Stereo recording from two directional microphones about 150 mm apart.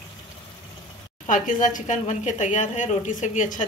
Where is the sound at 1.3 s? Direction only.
60° left (ahead or behind).